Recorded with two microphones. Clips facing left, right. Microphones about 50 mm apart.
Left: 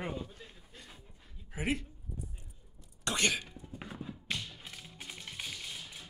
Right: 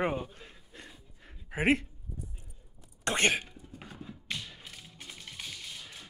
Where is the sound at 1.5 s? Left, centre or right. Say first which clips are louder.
Right 8 dB; right.